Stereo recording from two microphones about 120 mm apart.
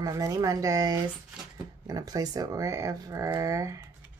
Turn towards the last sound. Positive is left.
turn(degrees=-25)  # may be behind; listen again after turning